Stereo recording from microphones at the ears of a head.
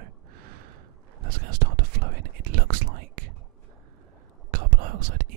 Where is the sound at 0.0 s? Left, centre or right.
Right.